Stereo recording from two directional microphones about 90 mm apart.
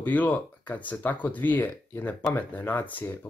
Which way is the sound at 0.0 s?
20° left (ahead or behind).